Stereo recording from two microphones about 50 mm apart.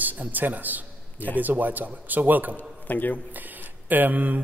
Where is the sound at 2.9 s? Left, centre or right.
Left.